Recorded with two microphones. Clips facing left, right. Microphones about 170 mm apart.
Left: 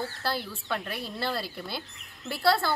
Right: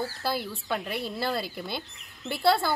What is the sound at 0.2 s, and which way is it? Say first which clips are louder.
A woman's voice: right 2 dB; 10° right (ahead or behind).